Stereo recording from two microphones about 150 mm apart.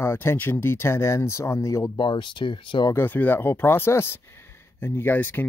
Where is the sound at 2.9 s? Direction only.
15° left (ahead or behind).